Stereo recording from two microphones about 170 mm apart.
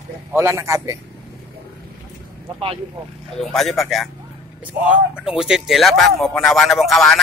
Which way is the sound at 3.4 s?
Centre (ahead or behind).